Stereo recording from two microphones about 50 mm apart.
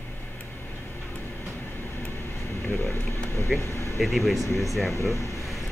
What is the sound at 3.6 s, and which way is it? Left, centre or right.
Air conditioning, left.